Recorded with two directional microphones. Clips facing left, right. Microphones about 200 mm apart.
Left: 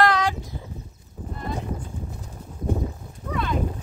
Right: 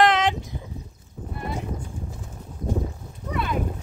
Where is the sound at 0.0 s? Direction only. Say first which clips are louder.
Right 1 dB; 20° right (ahead or behind).